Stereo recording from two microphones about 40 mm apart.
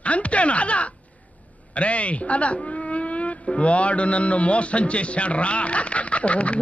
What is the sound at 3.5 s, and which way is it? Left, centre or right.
A man's voice, left.